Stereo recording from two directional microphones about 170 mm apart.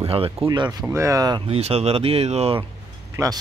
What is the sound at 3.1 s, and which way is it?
Speech, 20° right (ahead or behind).